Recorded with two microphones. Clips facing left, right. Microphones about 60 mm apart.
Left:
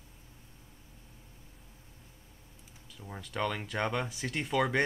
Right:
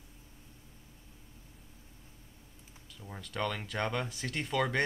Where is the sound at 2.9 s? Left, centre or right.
Centre.